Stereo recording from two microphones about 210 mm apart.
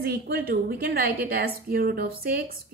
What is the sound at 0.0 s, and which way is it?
A woman's voice, 50° right (ahead or behind).